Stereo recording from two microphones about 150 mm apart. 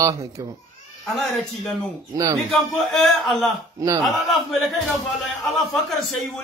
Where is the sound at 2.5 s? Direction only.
Centre (ahead or behind).